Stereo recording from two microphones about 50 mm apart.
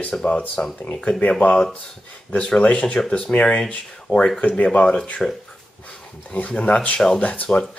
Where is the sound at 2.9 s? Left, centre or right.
Centre.